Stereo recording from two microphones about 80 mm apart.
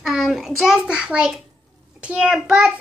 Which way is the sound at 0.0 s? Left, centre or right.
Centre.